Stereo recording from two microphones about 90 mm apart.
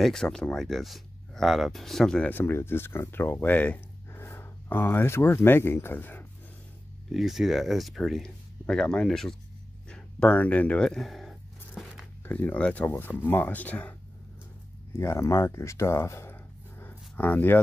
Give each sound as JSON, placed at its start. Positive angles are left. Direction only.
{"t": 0.0, "sound": "speech", "side_deg": 5}
{"t": 2.2, "sound": "speech", "side_deg": 25}
{"t": 7.1, "sound": "speech", "side_deg": 0}
{"t": 9.8, "sound": "a sound", "side_deg": 10}
{"t": 12.3, "sound": "speech", "side_deg": 20}
{"t": 15.0, "sound": "speech", "side_deg": 30}
{"t": 16.8, "sound": "a sound", "side_deg": 20}